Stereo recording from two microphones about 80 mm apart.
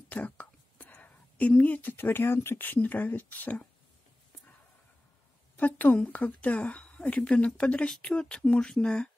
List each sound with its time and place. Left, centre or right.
0.1 s speech: centre
5.6 s a woman's voice: left